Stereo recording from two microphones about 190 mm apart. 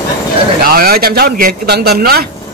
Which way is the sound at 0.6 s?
50° right (ahead or behind).